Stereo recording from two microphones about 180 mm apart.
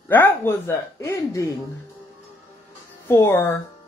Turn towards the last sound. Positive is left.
turn(degrees=15)  # may be behind; listen again after turning